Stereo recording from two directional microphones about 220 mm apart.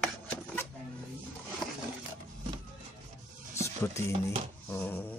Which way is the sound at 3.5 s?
15° left (ahead or behind).